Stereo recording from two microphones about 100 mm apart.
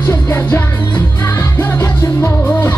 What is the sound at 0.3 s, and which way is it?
Music, 20° left (ahead or behind).